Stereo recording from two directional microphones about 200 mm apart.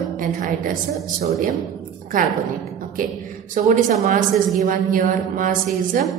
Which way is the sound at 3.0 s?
40° right (ahead or behind).